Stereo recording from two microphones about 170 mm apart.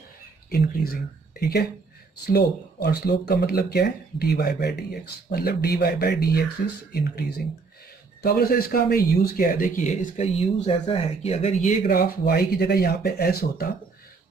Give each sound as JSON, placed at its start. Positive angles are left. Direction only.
{"t": 0.5, "sound": "speech", "side_deg": 65}